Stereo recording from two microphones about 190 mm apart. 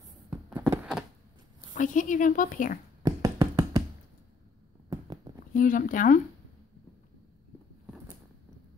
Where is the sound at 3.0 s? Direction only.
20° right (ahead or behind).